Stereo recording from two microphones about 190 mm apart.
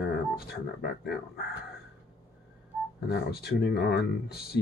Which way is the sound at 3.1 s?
55° left (ahead or behind).